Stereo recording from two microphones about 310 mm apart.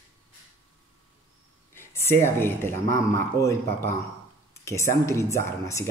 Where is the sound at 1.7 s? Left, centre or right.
Centre.